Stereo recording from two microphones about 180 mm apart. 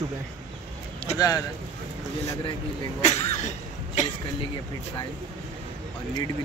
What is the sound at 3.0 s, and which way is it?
Speech, 40° left (ahead or behind).